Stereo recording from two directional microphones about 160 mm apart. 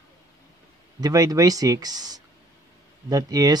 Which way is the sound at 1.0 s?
20° right (ahead or behind).